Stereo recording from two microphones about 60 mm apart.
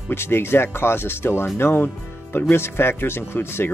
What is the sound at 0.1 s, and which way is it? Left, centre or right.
Speech, left.